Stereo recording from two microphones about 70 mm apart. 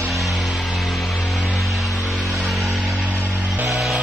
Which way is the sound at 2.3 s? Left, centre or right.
Centre.